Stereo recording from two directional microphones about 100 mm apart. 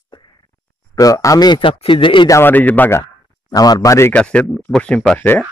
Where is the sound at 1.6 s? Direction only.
65° left (ahead or behind).